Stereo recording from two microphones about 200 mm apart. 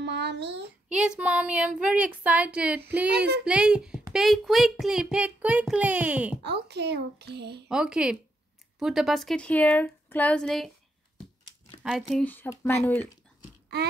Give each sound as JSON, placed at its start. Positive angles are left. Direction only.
{"t": 0.0, "sound": "child singing", "side_deg": -60}
{"t": 0.8, "sound": "speech", "side_deg": -5}
{"t": 6.4, "sound": "a child's voice", "side_deg": -55}
{"t": 7.6, "sound": "speech", "side_deg": -5}
{"t": 11.8, "sound": "speech", "side_deg": 0}